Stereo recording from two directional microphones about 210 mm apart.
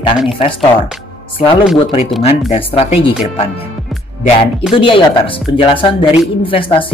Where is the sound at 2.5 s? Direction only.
30° left (ahead or behind).